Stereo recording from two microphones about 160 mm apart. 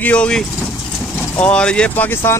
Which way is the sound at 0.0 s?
5° left (ahead or behind).